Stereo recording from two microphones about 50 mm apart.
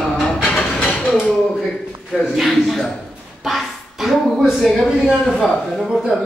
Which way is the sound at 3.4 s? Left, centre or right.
Centre.